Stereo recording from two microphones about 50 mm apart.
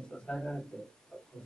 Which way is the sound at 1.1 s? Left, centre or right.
Centre.